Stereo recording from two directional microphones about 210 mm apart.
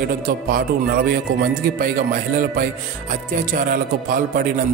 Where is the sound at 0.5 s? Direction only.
45° right (ahead or behind).